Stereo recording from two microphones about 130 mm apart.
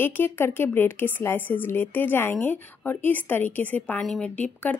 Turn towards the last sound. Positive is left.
turn(degrees=10)  # may be behind; listen again after turning